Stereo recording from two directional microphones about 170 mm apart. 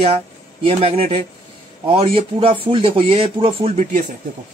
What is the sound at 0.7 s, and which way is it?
Speech, 35° right (ahead or behind).